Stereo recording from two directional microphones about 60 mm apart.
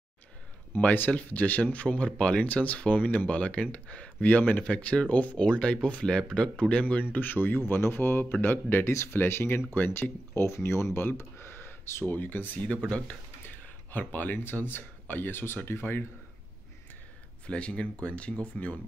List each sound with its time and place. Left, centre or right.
0.9 s speech: left
13.9 s speech: left
17.5 s speech: centre